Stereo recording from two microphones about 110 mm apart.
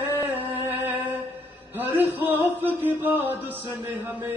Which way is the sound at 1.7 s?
15° right (ahead or behind).